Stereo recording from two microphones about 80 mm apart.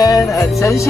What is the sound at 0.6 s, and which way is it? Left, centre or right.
Speech, left.